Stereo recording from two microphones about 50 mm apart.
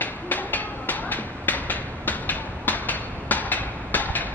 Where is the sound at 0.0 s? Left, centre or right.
Left.